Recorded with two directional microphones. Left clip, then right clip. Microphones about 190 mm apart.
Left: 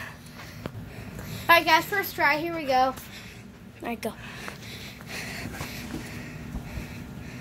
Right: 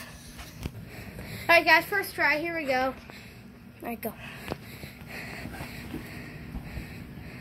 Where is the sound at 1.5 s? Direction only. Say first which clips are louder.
Left 1 dB; 35° right (ahead or behind).